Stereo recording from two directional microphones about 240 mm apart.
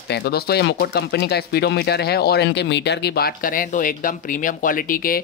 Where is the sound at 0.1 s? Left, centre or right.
Left.